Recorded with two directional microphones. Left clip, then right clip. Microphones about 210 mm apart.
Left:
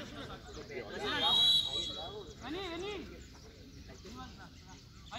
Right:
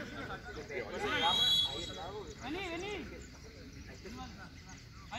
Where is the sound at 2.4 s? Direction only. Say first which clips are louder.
Even; 40° right (ahead or behind).